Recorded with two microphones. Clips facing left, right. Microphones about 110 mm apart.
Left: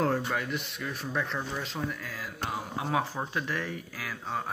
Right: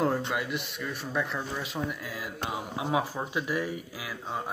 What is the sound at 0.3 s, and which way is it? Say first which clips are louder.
Speech: even; 5° right (ahead or behind).